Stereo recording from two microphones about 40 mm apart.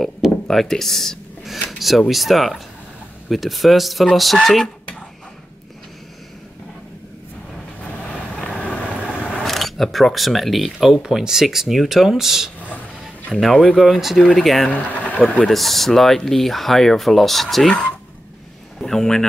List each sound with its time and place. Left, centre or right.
0.5 s speech: centre
1.7 s speech: centre
9.4 s speech: centre
13.7 s speech: centre
14.7 s speech: left
15.4 s speech: centre
17.6 s speech: left
18.8 s speech: centre